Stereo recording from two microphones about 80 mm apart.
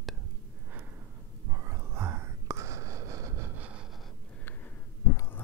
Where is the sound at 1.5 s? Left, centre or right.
Right.